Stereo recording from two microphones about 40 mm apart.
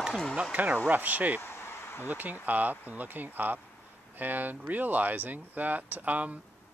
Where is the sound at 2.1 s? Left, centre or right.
Right.